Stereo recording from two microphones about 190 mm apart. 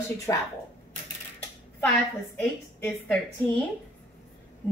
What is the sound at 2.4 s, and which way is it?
A woman's voice, 10° left (ahead or behind).